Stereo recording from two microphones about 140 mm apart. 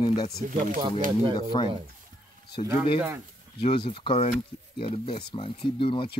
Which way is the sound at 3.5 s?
40° left (ahead or behind).